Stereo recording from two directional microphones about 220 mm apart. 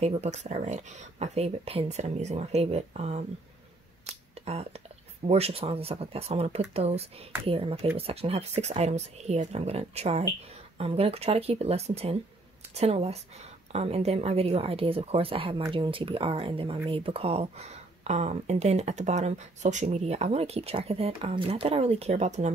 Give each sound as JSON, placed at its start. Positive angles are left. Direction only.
{"t": 0.0, "sound": "speech", "side_deg": -30}
{"t": 4.5, "sound": "speech", "side_deg": -30}